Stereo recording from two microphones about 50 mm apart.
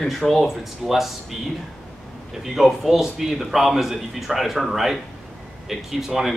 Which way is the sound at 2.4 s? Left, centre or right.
Centre.